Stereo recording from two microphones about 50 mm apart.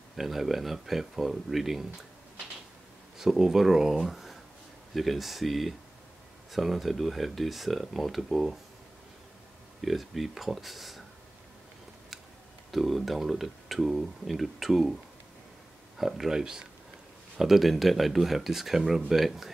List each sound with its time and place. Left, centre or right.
0.1 s speech: centre
3.2 s speech: centre
9.8 s speech: centre
12.7 s speech: centre
16.0 s speech: centre